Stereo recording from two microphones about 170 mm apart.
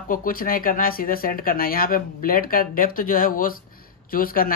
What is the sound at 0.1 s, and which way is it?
Speech, 55° left (ahead or behind).